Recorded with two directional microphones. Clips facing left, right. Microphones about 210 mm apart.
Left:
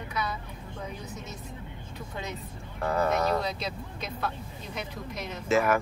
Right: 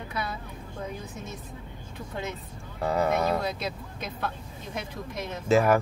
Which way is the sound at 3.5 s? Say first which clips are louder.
Right 1 dB; 50° right (ahead or behind).